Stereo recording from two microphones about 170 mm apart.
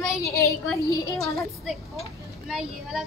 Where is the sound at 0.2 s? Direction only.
20° left (ahead or behind).